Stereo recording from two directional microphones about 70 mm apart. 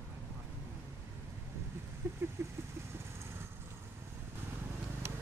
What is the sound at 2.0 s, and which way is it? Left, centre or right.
Vehicle, right.